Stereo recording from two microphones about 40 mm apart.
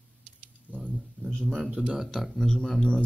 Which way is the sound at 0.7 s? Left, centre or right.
Right.